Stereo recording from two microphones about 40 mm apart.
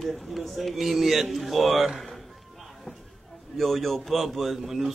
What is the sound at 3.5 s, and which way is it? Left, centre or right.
A man's voice, centre.